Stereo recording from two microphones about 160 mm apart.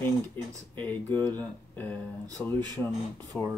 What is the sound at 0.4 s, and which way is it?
Speech, 10° left (ahead or behind).